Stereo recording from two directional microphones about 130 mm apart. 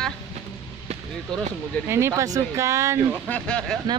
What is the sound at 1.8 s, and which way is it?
Speech, 20° right (ahead or behind).